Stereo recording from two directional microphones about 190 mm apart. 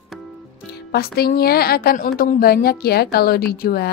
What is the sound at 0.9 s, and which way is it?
A woman's voice, 55° left (ahead or behind).